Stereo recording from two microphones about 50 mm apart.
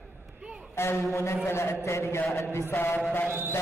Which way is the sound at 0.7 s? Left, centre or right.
Left.